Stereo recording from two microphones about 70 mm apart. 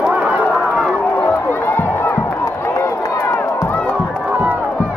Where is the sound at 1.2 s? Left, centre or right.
Left.